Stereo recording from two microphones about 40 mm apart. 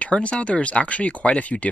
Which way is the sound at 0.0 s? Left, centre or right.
Left.